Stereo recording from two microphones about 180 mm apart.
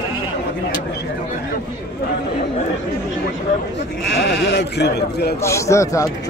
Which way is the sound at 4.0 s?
75° left (ahead or behind).